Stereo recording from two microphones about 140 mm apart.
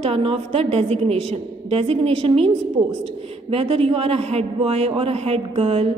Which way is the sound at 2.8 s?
30° right (ahead or behind).